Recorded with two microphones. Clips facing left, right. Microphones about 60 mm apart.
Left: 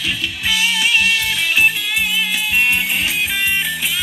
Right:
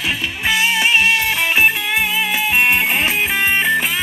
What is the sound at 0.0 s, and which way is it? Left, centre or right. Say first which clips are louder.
Music: right 2 dB; right.